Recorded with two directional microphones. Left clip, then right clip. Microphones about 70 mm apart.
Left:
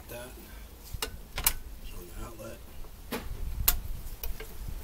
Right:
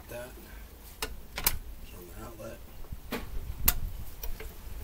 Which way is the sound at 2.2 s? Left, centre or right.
Centre.